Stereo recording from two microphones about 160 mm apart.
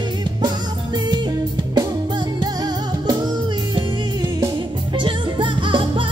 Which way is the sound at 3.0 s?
25° right (ahead or behind).